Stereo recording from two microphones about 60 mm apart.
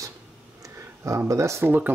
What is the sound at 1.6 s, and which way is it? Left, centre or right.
Speech, right.